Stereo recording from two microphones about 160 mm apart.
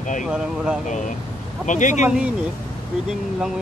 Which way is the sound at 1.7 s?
50° left (ahead or behind).